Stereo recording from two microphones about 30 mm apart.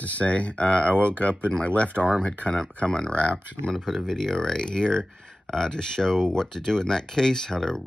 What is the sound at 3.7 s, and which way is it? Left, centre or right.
Speech, centre.